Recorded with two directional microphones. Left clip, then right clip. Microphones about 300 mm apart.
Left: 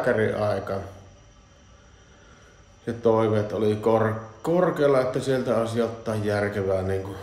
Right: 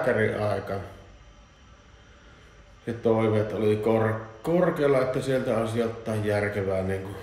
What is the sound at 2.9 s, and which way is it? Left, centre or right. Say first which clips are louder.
A man's voice: left 3 dB; centre.